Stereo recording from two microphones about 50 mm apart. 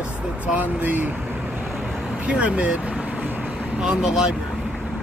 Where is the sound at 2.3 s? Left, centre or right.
Right.